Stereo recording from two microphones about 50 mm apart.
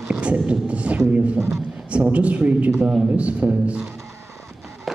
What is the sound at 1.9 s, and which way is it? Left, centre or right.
Speech, right.